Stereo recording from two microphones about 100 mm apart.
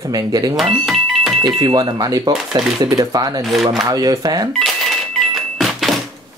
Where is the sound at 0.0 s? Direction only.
40° right (ahead or behind).